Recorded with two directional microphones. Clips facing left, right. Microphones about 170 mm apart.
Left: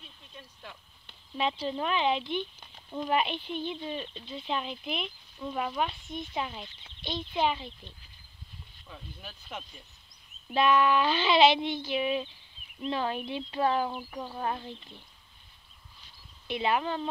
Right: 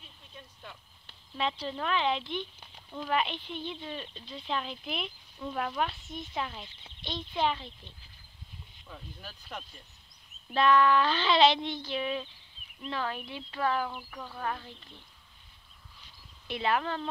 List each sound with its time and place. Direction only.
0.3 s a sound: centre (ahead or behind)
1.3 s speech: 15° left (ahead or behind)
4.4 s speech: 5° left (ahead or behind)
8.8 s speech: centre (ahead or behind)
10.5 s speech: 15° left (ahead or behind)
16.4 s speech: centre (ahead or behind)
16.7 s speech: 10° left (ahead or behind)